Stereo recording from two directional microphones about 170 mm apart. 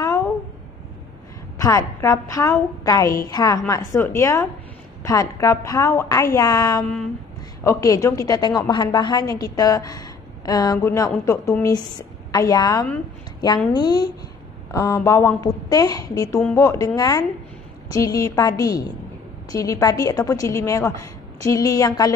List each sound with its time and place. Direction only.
1.6 s a woman's voice: 15° left (ahead or behind)
6.8 s a sound: 5° left (ahead or behind)
7.6 s a woman's voice: 20° left (ahead or behind)